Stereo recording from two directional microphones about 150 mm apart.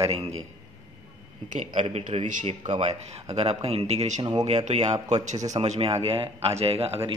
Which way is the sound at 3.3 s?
45° right (ahead or behind).